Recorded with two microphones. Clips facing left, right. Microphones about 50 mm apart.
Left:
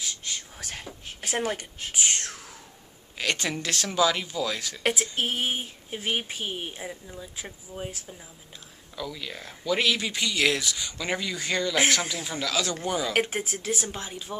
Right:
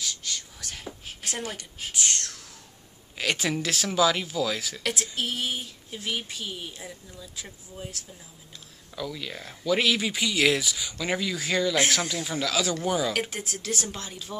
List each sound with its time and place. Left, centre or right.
0.2 s whispering: centre
0.6 s whispering: left
1.2 s a sound: centre
1.9 s whispering: centre
3.2 s speech: centre
5.1 s speech: left
6.8 s speech: left
8.9 s speech: centre
13.4 s speech: left
13.7 s a woman's voice: centre